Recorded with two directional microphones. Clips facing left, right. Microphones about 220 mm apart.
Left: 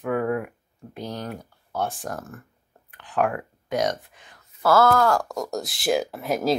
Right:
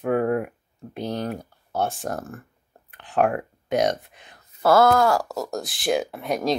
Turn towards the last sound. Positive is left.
turn(degrees=0)  # may be behind; listen again after turning